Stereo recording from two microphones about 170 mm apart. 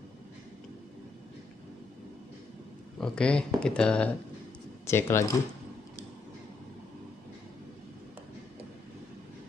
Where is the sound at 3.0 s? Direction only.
5° left (ahead or behind).